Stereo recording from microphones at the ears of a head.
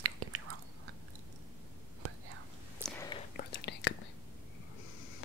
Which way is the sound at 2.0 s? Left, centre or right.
Right.